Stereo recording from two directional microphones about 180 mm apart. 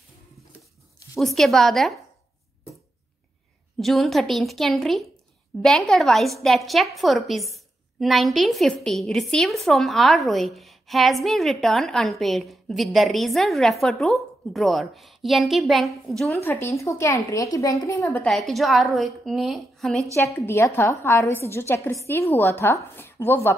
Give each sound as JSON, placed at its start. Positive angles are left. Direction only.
{"t": 1.2, "sound": "a woman's voice", "side_deg": 0}
{"t": 3.7, "sound": "a woman's voice", "side_deg": 0}
{"t": 16.4, "sound": "a woman's voice", "side_deg": 15}
{"t": 18.2, "sound": "a woman's voice", "side_deg": 0}
{"t": 20.2, "sound": "a woman's voice", "side_deg": 15}